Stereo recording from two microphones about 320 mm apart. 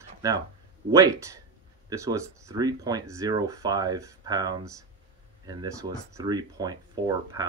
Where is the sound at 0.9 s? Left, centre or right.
Centre.